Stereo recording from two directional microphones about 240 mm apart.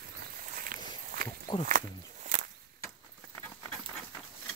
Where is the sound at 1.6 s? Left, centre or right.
Right.